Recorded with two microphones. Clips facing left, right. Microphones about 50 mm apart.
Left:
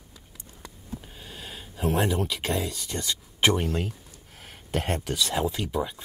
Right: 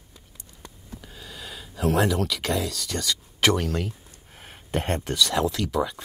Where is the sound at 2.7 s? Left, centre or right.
Right.